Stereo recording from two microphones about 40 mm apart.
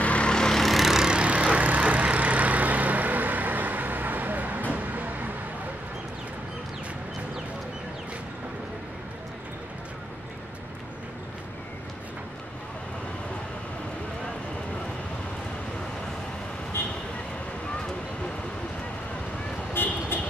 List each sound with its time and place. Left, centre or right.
0.0 s vehicle: left
0.3 s vehicle: centre
0.6 s vehicle: centre
0.9 s vehicle: centre
1.2 s vehicle: right
19.8 s vehicle: left